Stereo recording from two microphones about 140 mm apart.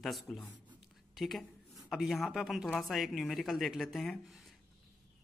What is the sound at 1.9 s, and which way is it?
A man's voice, centre (ahead or behind).